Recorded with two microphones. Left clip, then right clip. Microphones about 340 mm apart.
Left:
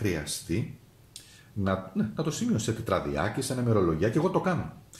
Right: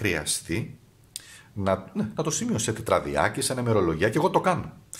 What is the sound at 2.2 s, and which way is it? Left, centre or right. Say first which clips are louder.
Speech: right 3 dB; right.